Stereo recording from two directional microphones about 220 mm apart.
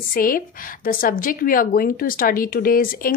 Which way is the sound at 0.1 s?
40° left (ahead or behind).